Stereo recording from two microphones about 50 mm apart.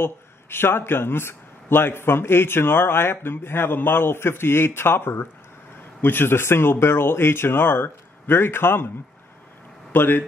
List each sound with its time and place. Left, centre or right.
0.0 s speech: left
9.9 s speech: left